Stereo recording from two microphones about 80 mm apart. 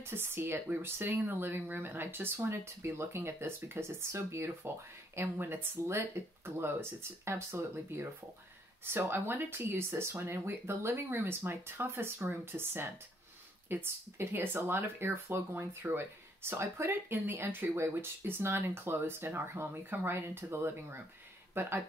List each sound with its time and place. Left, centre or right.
0.0 s speech: right